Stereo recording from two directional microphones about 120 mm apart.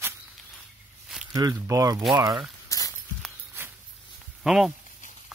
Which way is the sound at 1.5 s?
25° right (ahead or behind).